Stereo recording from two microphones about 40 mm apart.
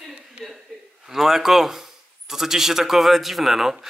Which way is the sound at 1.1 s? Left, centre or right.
Centre.